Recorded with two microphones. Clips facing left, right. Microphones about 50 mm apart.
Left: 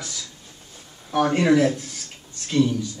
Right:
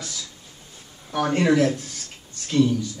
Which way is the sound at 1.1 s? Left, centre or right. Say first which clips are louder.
Left 2 dB; centre.